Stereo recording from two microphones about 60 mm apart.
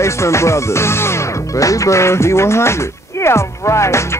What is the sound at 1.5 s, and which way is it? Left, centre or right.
Speech, left.